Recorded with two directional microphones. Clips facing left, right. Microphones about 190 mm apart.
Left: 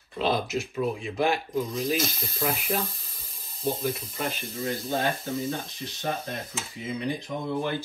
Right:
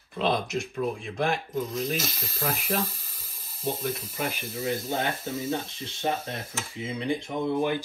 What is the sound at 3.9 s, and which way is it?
Speech, 10° right (ahead or behind).